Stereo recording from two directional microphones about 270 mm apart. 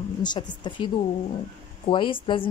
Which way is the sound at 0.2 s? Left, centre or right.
Centre.